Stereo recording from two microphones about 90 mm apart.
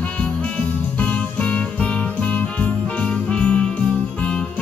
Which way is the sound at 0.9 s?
15° left (ahead or behind).